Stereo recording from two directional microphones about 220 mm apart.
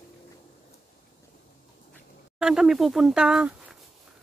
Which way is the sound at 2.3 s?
Centre (ahead or behind).